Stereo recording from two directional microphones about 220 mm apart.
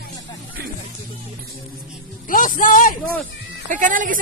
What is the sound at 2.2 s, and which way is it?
Speech, 40° left (ahead or behind).